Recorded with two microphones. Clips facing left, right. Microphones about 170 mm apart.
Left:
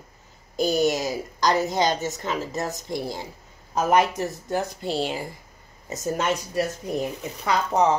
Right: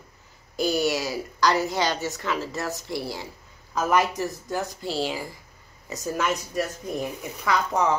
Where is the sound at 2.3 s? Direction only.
45° left (ahead or behind).